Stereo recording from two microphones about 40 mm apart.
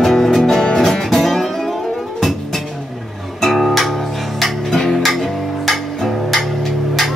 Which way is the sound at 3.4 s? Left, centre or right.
Centre.